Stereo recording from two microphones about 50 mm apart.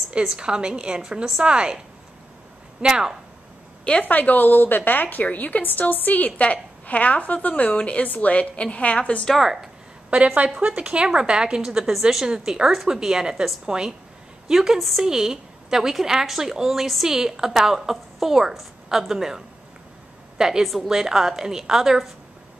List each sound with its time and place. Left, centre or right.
0.4 s a woman's voice: centre
2.8 s a woman's voice: centre
4.0 s a woman's voice: left
9.4 s a woman's voice: centre
10.0 s a woman's voice: right
20.6 s a woman's voice: centre